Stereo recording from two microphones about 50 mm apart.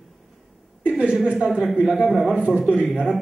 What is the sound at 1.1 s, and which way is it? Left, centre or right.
A man's voice, centre.